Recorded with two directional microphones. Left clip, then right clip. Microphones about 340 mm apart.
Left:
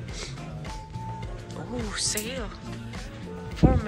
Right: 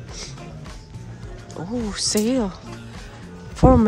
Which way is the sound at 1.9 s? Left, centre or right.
Centre.